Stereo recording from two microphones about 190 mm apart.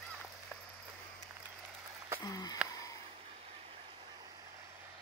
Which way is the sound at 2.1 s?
20° left (ahead or behind).